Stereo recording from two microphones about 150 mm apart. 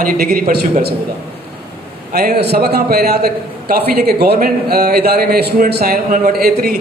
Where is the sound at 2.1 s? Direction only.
90° right.